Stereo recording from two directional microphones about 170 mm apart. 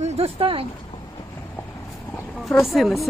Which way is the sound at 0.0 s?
40° right (ahead or behind).